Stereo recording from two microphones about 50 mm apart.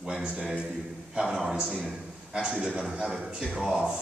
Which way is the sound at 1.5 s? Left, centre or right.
Right.